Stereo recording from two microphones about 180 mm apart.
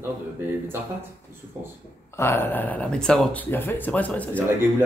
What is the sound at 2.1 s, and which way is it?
Speech, 15° left (ahead or behind).